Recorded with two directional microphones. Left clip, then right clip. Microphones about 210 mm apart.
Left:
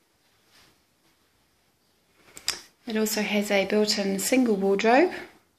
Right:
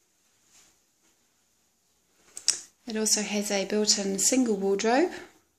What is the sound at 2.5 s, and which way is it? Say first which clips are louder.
Speech: right 2 dB; 5° right (ahead or behind).